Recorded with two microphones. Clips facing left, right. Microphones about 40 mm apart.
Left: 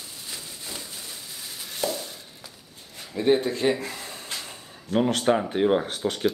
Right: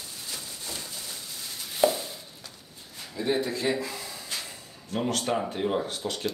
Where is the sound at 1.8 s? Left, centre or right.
Right.